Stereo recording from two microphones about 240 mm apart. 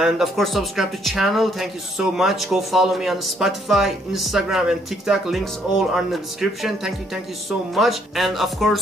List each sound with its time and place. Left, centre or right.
0.0 s speech: centre